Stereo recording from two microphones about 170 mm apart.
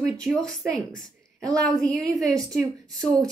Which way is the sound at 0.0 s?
5° left (ahead or behind).